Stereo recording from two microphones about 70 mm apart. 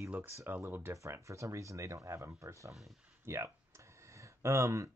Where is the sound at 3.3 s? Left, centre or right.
Right.